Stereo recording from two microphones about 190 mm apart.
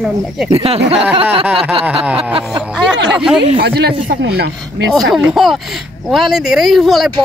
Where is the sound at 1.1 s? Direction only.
30° right (ahead or behind).